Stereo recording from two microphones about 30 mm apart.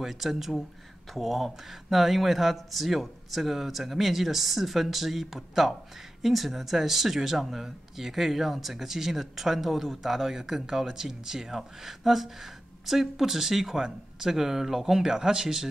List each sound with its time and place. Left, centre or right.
0.0 s speech: centre